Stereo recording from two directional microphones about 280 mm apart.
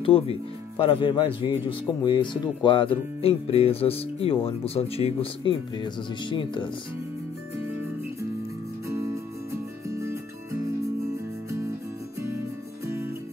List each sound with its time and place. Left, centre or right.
0.0 s speech: centre
8.8 s music: centre
12.8 s music: centre